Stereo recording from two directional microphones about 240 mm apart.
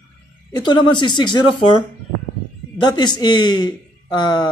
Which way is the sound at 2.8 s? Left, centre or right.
Centre.